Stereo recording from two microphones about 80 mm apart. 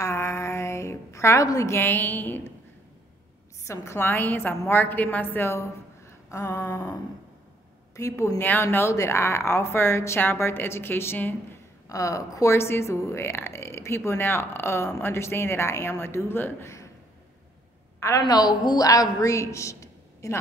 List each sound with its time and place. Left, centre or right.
0.0 s a sound: left
1.8 s a woman's voice: left
3.6 s a woman's voice: left
8.4 s a woman's voice: left
8.7 s a woman's voice: left
11.9 s a woman's voice: left
18.2 s a woman's voice: left
18.9 s a woman's voice: left